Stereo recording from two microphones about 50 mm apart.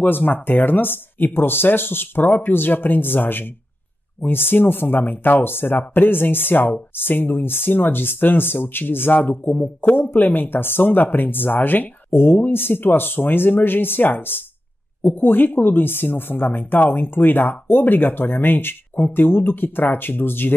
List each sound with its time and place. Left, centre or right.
0.0 s speech: left